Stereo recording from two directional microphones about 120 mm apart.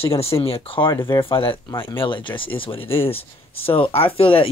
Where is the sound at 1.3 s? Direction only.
50° left (ahead or behind).